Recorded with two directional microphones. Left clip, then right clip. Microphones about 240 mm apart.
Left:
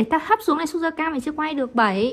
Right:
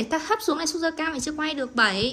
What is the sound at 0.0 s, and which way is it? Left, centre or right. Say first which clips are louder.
A woman's voice: left 5 dB; left.